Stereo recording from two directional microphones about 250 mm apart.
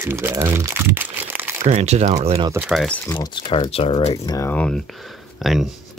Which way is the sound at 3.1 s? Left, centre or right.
Centre.